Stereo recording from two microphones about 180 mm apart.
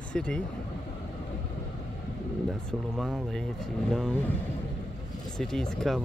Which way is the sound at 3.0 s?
Centre (ahead or behind).